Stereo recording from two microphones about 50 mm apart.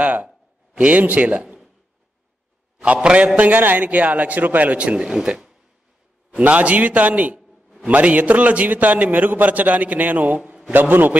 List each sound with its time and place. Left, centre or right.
0.0 s a sound: right
0.8 s speech: right
2.8 s a man's voice: right
6.4 s a man's voice: right